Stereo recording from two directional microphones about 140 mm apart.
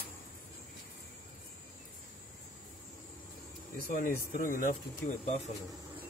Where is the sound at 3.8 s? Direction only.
85° left.